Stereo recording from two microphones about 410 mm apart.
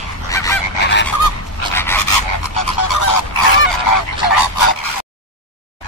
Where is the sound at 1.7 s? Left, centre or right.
Centre.